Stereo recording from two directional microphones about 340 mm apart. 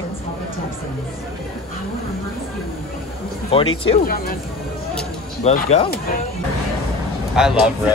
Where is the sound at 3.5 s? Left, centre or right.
Centre.